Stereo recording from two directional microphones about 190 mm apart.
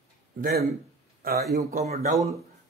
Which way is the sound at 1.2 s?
55° right (ahead or behind).